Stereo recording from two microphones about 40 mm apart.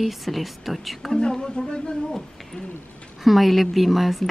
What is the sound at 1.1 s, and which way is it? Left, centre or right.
Speech, centre.